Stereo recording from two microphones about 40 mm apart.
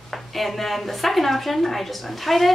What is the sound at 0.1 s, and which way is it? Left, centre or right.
A woman's voice, centre.